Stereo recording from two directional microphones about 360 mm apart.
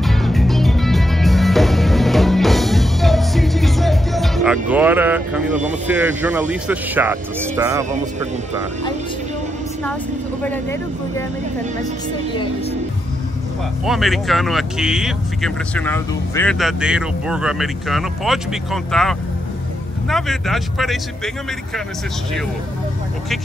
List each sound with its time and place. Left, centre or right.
0.0 s music: centre
5.9 s speech: centre
10.4 s speech: centre
13.8 s speech: centre